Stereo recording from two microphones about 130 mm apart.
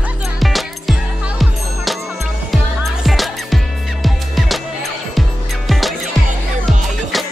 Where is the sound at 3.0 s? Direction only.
Centre (ahead or behind).